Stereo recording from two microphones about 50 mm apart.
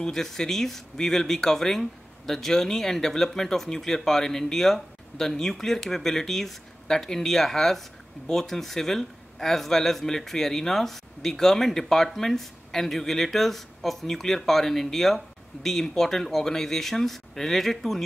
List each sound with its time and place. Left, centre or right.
0.0 s speech: centre